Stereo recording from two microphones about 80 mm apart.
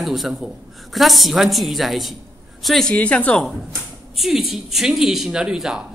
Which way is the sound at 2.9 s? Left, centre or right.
Centre.